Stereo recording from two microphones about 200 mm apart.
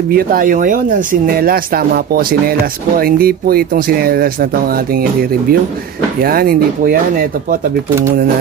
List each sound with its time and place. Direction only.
0.1 s speech: 45° right (ahead or behind)